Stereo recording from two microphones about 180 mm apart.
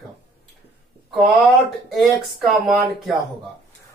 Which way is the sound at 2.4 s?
Centre (ahead or behind).